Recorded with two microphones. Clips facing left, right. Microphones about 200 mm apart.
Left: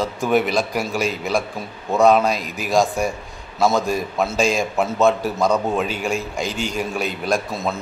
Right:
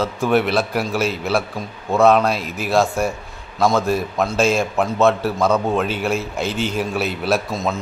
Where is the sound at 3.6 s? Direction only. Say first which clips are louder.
Right 1 dB; 10° left (ahead or behind).